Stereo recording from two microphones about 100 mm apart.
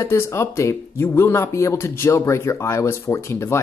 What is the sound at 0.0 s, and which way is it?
Speech, 25° left (ahead or behind).